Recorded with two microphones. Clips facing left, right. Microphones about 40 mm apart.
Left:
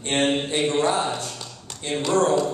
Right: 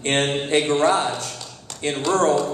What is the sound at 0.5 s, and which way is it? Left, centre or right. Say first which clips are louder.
Speech: right 4 dB; right.